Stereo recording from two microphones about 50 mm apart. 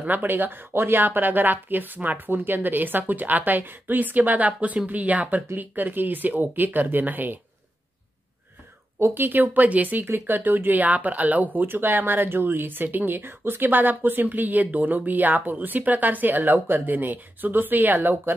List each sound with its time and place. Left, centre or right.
0.0 s speech: right
9.1 s speech: right
10.0 s speech: right
11.6 s speech: right